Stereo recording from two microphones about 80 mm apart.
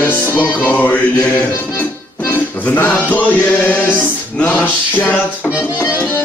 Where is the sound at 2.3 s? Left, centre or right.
Left.